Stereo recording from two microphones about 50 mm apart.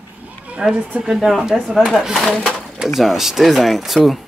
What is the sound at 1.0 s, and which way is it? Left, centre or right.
Speech, centre.